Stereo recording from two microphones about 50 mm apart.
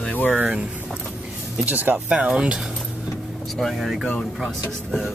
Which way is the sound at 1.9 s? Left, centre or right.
Centre.